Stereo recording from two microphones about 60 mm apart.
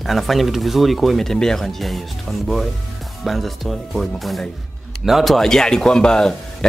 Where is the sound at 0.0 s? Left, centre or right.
Centre.